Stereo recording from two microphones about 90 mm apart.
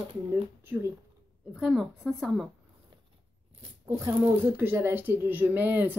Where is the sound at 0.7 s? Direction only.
25° right (ahead or behind).